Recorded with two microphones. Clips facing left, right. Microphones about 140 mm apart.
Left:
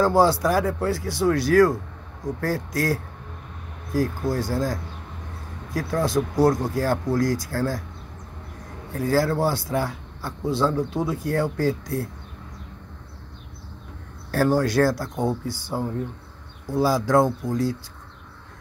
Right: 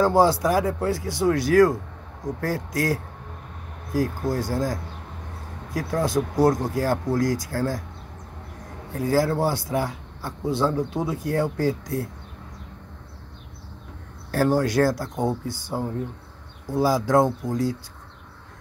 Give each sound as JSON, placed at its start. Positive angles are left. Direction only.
{"t": 0.0, "sound": "speech", "side_deg": -15}
{"t": 4.3, "sound": "speech", "side_deg": -15}
{"t": 8.9, "sound": "speech", "side_deg": -15}
{"t": 14.3, "sound": "speech", "side_deg": -15}